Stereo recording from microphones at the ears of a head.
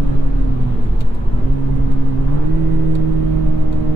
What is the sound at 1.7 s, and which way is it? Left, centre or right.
Vehicle, right.